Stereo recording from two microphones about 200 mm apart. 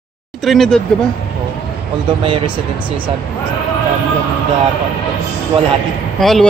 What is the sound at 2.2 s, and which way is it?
Speech, 25° right (ahead or behind).